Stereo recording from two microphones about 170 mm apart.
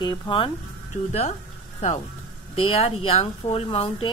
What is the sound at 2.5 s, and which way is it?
A woman's voice, 35° left (ahead or behind).